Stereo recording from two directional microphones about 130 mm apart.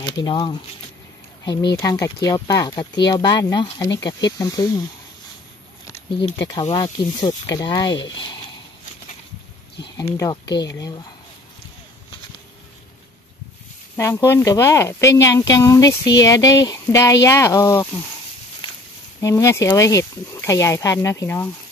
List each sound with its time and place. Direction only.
0.0 s speech: 35° left (ahead or behind)
6.7 s speech: 35° left (ahead or behind)
10.3 s speech: 35° left (ahead or behind)
13.9 s speech: 20° left (ahead or behind)
19.2 s speech: 20° left (ahead or behind)